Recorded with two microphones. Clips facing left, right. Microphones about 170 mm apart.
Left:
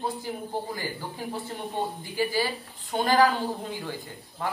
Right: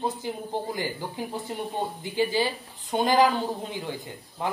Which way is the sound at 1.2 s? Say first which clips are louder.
Right 2 dB; 15° right (ahead or behind).